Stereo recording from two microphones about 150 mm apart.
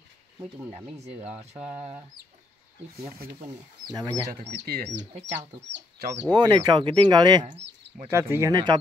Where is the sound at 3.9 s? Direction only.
25° right (ahead or behind).